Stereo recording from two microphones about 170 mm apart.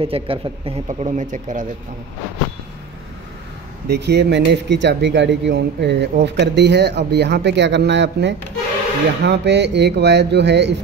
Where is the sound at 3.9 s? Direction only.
80° right.